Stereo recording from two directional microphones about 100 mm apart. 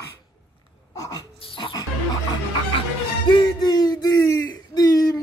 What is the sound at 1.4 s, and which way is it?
Music, 60° left (ahead or behind).